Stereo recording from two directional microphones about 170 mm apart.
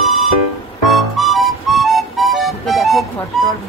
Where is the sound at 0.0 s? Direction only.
Centre (ahead or behind).